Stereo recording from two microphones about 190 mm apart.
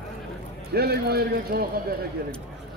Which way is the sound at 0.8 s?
55° right (ahead or behind).